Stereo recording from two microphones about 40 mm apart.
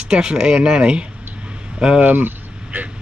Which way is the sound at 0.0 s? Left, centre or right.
Right.